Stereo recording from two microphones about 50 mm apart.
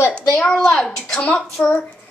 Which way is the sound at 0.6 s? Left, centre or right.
Centre.